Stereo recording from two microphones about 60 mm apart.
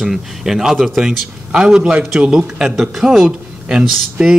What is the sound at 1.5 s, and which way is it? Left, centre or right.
Speech, centre.